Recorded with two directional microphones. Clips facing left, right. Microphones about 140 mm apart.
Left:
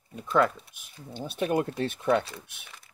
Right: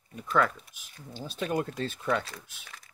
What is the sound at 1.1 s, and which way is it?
Speech, 60° left (ahead or behind).